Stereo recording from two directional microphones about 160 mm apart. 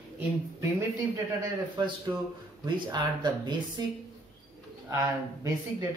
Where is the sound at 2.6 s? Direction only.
25° right (ahead or behind).